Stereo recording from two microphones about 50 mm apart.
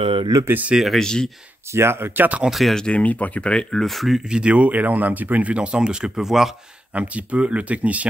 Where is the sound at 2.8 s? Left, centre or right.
Left.